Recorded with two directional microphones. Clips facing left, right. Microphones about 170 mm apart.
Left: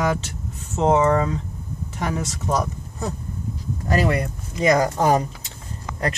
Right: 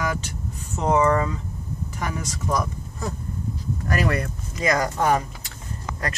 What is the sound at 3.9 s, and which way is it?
Speech, 25° left (ahead or behind).